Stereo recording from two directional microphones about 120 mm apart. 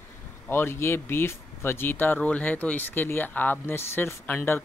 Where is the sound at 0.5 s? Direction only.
20° left (ahead or behind).